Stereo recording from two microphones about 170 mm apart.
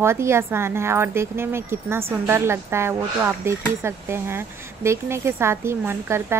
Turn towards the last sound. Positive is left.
turn(degrees=-15)  # may be behind; listen again after turning